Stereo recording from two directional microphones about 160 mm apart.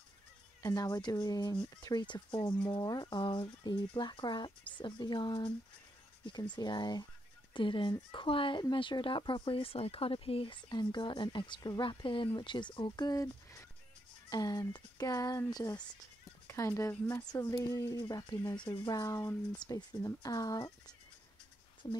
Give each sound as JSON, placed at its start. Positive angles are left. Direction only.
{"t": 0.6, "sound": "speech", "side_deg": 20}
{"t": 6.5, "sound": "speech", "side_deg": 25}